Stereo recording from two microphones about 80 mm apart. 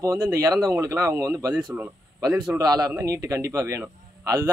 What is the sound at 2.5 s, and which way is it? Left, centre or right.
A man's voice, right.